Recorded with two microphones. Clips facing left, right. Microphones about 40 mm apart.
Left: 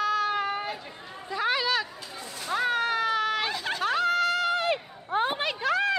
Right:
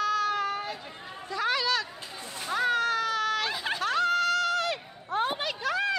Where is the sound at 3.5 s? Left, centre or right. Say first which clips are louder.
Even; centre.